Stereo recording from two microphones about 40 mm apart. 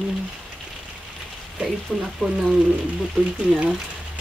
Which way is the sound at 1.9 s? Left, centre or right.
Centre.